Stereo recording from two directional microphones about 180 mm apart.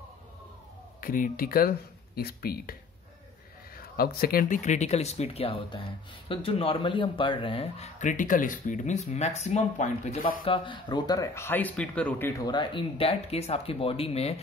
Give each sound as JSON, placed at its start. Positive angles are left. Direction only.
{"t": 1.0, "sound": "speech", "side_deg": 50}
{"t": 3.7, "sound": "speech", "side_deg": 55}
{"t": 10.4, "sound": "speech", "side_deg": 30}